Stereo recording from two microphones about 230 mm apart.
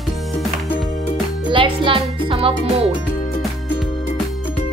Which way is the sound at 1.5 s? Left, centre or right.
Right.